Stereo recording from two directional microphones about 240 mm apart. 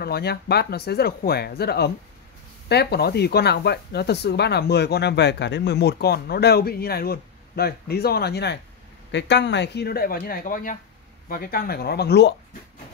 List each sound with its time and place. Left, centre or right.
0.0 s speech: left